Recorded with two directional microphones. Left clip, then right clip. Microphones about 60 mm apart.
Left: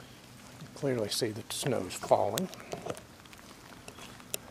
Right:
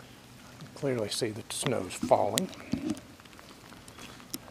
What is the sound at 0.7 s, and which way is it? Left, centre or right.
Speech, centre.